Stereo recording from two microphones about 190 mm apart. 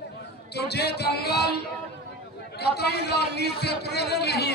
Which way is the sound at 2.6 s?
60° left (ahead or behind).